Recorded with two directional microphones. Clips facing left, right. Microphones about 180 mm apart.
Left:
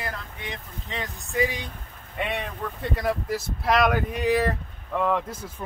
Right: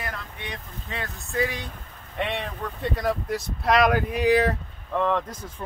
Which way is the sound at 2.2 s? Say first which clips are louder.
Right 1 dB; centre (ahead or behind).